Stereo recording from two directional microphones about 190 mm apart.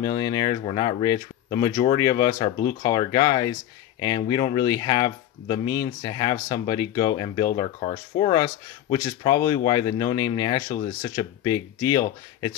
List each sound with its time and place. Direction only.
0.0 s speech: 20° left (ahead or behind)